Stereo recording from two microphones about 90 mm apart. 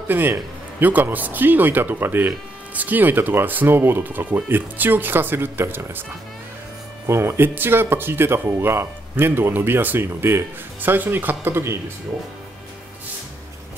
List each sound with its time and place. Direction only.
0.1 s speech: 25° right (ahead or behind)
7.1 s speech: 30° right (ahead or behind)